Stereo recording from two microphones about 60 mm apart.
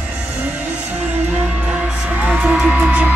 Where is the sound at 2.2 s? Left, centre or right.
Right.